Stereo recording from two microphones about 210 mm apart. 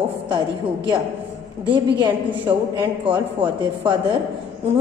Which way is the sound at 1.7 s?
20° right (ahead or behind).